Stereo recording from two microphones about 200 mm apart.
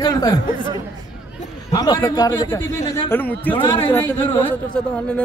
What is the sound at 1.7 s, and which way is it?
A man's voice, 20° left (ahead or behind).